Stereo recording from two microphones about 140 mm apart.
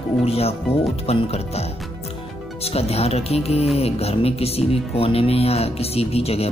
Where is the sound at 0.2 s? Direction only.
45° left (ahead or behind).